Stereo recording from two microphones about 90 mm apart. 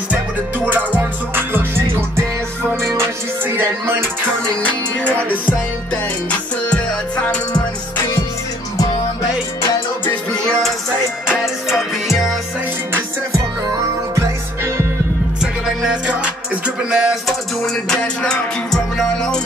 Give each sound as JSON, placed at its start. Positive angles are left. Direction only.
{"t": 0.7, "sound": "music", "side_deg": -20}
{"t": 11.2, "sound": "music", "side_deg": -5}
{"t": 14.1, "sound": "music", "side_deg": -30}
{"t": 15.4, "sound": "music", "side_deg": -10}
{"t": 17.8, "sound": "music", "side_deg": 10}